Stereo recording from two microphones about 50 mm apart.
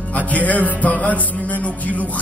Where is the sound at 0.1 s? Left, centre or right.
Left.